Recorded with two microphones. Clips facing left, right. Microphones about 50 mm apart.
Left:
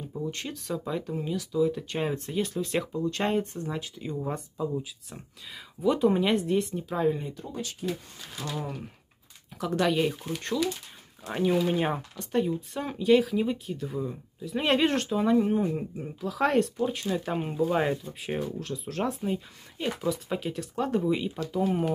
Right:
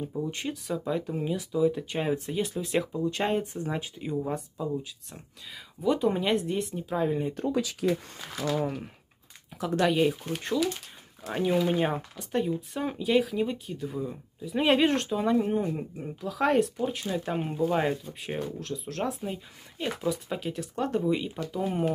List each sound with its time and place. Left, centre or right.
0.1 s speech: centre
3.5 s speech: centre
4.2 s speech: centre
9.6 s speech: centre